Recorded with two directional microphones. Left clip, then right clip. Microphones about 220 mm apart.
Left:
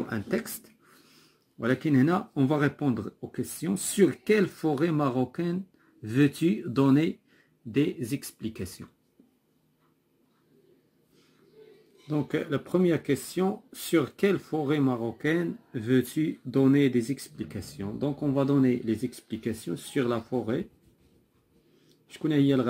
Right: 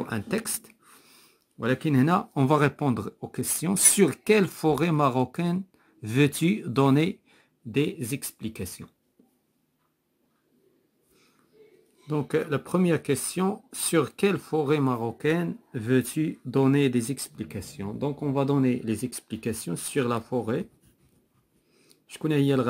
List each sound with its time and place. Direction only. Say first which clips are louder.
0.3 s a sound: right 1 dB; 30° right (ahead or behind)
2.1 s speech: right 4 dB; 45° right (ahead or behind)
12.1 s speech: right 3 dB; 30° right (ahead or behind)
22.1 s speech: even; 40° right (ahead or behind)